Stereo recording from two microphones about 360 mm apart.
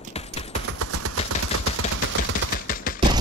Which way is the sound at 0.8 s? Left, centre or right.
Right.